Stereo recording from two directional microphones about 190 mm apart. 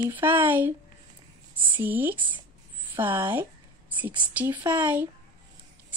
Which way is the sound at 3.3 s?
10° right (ahead or behind).